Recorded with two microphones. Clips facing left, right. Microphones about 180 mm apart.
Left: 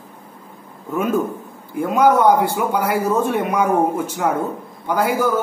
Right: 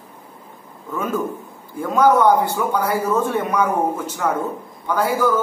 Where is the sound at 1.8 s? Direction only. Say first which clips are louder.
Left 1 dB; 15° left (ahead or behind).